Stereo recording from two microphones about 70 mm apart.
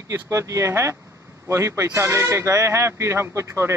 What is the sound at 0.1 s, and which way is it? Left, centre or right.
Speech, right.